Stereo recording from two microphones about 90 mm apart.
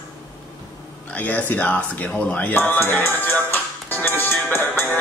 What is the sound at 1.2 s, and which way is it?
Speech, 20° left (ahead or behind).